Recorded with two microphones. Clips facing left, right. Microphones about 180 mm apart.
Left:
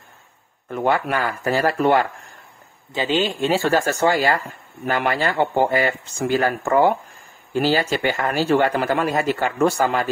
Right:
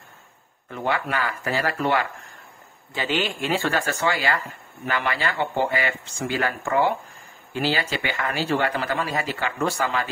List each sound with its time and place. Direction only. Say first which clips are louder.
0.7 s speech: left 5 dB; 50° left (ahead or behind)
2.9 s speech: left 5 dB; 20° left (ahead or behind); by 10.0 s 45° left (ahead or behind)